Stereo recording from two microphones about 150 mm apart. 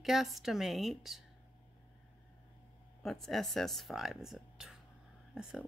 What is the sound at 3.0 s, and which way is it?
A woman's voice, centre (ahead or behind).